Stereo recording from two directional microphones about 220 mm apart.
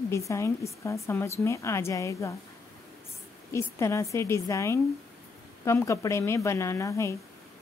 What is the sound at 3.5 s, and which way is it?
Speech, 15° left (ahead or behind).